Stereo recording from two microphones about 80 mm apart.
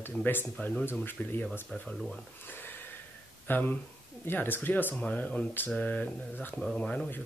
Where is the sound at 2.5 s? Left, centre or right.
Left.